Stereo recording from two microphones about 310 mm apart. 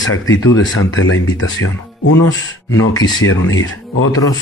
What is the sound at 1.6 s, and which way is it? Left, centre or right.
Speech, left.